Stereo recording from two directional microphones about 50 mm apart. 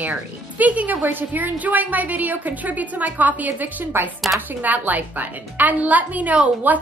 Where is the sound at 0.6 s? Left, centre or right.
Right.